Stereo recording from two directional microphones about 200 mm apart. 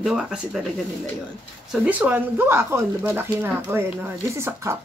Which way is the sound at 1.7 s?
10° right (ahead or behind).